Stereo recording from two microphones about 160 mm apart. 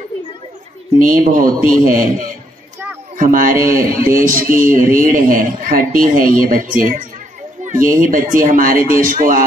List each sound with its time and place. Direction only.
0.9 s speech: 55° right (ahead or behind)